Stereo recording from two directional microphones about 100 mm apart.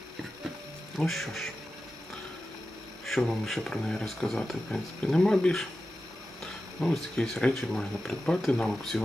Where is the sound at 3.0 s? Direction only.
Centre (ahead or behind).